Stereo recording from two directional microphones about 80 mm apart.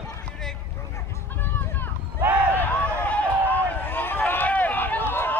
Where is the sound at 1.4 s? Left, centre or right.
Left.